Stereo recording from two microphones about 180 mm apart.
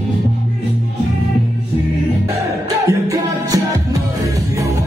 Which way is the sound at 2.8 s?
20° right (ahead or behind).